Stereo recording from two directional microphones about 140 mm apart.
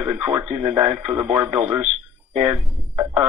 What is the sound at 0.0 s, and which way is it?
A man's voice, 5° right (ahead or behind).